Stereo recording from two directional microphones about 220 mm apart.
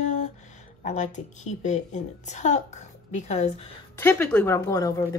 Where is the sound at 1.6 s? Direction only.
35° left (ahead or behind).